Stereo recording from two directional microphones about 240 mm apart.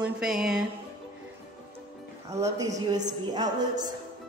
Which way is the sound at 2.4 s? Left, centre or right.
Centre.